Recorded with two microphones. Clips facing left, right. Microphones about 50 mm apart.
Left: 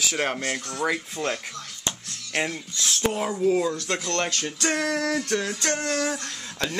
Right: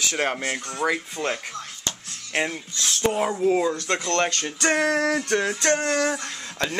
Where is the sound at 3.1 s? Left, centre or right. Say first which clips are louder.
Right 1 dB; centre.